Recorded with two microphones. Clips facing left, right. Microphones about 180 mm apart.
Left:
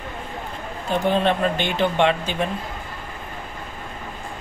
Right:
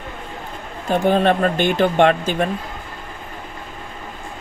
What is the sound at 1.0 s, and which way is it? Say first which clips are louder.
Speech: right 4 dB; 45° right (ahead or behind).